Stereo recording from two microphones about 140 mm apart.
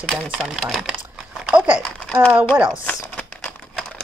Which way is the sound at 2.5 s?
10° right (ahead or behind).